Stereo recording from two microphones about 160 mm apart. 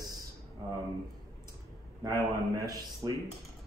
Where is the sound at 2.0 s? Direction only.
20° right (ahead or behind).